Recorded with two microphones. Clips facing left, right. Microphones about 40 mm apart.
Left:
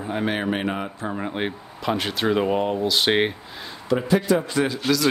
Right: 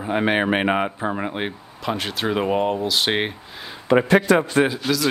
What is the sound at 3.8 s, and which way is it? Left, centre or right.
Speech, right.